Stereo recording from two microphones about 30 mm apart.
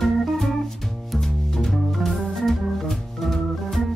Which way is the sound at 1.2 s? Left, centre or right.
Centre.